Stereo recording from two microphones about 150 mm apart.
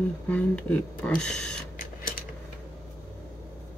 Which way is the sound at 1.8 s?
65° left (ahead or behind).